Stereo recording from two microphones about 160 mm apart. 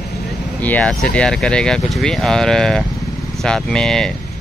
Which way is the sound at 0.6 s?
10° left (ahead or behind).